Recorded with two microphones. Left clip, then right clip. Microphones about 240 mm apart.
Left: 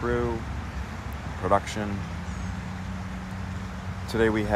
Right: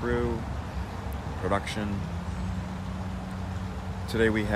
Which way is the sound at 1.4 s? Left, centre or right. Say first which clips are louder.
Left 5 dB; centre.